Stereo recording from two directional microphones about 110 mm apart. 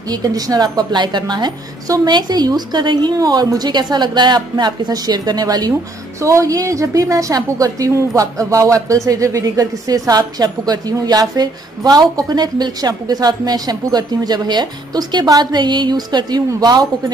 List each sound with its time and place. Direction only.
0.1 s a woman's voice: 35° right (ahead or behind)